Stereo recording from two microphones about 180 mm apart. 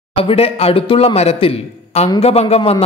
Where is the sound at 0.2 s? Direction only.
30° left (ahead or behind).